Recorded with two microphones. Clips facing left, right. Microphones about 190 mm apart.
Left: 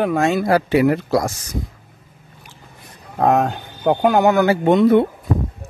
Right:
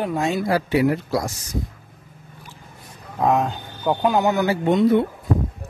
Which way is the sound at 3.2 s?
70° left (ahead or behind).